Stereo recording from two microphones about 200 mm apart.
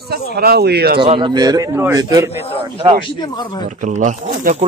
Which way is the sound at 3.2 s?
20° left (ahead or behind).